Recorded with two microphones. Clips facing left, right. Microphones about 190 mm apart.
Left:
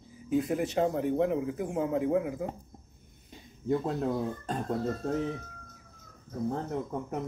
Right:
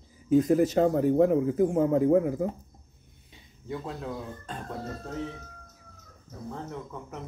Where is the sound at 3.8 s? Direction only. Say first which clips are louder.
Left 6 dB; 45° left (ahead or behind).